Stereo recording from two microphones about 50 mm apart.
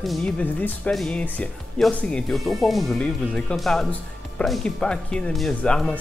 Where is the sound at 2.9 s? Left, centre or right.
Left.